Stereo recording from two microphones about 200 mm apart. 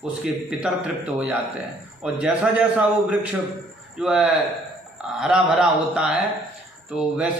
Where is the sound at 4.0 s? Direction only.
5° right (ahead or behind).